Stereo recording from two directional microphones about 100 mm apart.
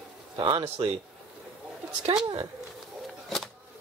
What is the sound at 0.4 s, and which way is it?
Speech, 55° right (ahead or behind).